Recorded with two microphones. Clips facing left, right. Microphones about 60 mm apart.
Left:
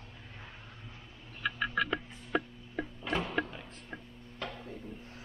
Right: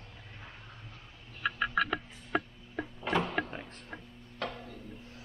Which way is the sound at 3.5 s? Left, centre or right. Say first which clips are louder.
Right 2 dB; right.